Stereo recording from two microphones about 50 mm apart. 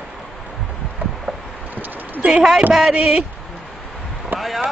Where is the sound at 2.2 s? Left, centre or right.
Right.